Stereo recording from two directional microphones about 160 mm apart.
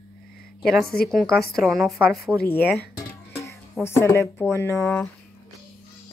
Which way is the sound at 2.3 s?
15° right (ahead or behind).